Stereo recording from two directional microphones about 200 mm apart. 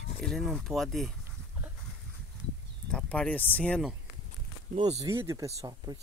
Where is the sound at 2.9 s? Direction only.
5° left (ahead or behind).